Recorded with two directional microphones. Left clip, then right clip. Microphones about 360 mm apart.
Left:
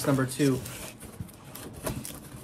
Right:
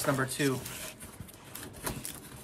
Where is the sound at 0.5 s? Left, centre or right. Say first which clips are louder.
Left 2 dB; centre.